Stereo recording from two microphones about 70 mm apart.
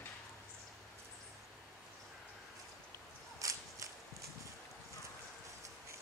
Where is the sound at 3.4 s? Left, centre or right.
Right.